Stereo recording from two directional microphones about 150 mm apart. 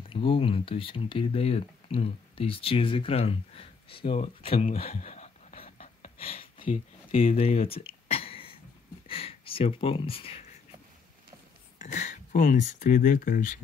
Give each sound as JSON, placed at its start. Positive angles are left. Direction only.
{"t": 0.0, "sound": "speech", "side_deg": 40}
{"t": 6.7, "sound": "a sound", "side_deg": 45}
{"t": 9.0, "sound": "speech", "side_deg": 40}
{"t": 11.8, "sound": "speech", "side_deg": 55}